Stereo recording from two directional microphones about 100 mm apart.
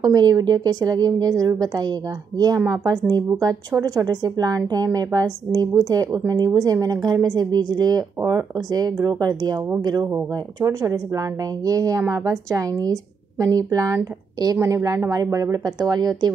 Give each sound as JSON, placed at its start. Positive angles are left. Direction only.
{"t": 0.0, "sound": "a woman's voice", "side_deg": -40}
{"t": 8.2, "sound": "speech", "side_deg": -30}
{"t": 8.6, "sound": "a woman's voice", "side_deg": -40}